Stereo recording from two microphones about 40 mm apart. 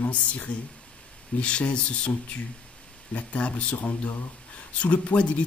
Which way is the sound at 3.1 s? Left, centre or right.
Left.